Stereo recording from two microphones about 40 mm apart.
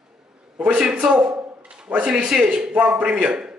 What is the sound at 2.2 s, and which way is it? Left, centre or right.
A man's voice, right.